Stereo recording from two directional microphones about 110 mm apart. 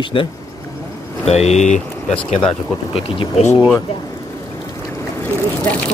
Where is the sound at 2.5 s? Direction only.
60° left (ahead or behind).